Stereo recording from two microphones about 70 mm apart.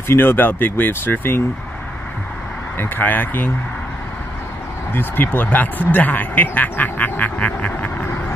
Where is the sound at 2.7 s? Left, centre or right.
Left.